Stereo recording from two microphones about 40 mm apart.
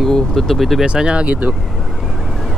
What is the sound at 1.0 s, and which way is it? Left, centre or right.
Speech, centre.